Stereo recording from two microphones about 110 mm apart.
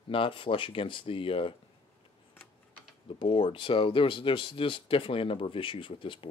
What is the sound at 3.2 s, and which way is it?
Speech, 50° left (ahead or behind).